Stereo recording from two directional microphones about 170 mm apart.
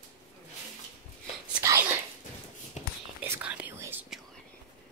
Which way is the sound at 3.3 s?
10° right (ahead or behind).